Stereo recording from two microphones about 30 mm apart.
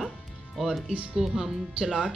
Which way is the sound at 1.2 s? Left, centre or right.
Centre.